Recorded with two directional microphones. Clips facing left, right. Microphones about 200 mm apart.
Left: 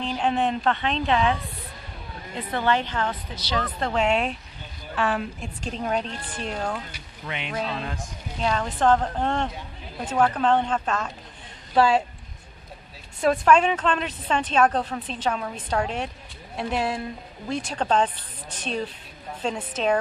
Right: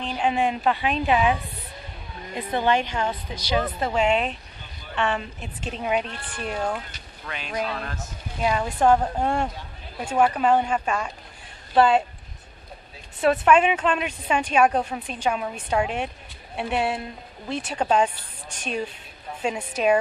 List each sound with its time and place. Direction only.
0.0 s a woman's voice: 5° right (ahead or behind)
3.8 s a woman's voice: centre (ahead or behind)
6.9 s speech: 20° left (ahead or behind)
8.4 s a woman's voice: 15° right (ahead or behind)
13.2 s a woman's voice: 5° right (ahead or behind)